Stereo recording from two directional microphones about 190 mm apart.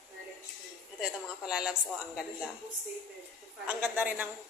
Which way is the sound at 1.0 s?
5° right (ahead or behind).